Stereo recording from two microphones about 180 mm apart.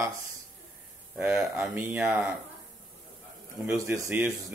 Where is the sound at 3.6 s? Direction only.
15° right (ahead or behind).